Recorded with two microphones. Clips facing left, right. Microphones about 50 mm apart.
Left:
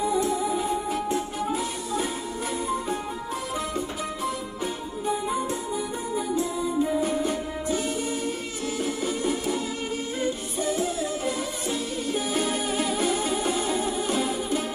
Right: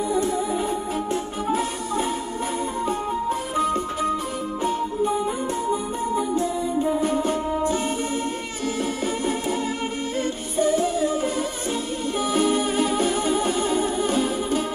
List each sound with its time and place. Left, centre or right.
0.1 s music: right
7.0 s music: right
9.0 s music: right